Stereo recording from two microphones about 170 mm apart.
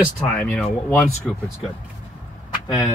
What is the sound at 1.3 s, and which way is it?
Speech, centre (ahead or behind).